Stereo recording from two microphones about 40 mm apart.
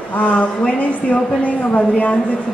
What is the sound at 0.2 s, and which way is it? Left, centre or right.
A woman's voice, left.